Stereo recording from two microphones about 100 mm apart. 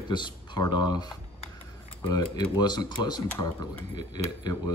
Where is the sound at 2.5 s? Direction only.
45° left (ahead or behind).